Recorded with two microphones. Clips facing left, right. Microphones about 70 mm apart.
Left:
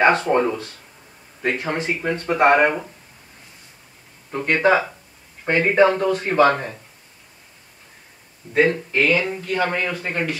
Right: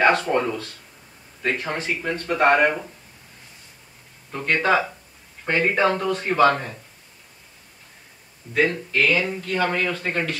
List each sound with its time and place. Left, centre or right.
0.0 s speech: left
4.3 s speech: centre
8.5 s speech: left